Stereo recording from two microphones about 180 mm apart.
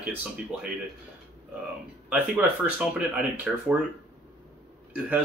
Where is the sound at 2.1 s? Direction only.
10° right (ahead or behind).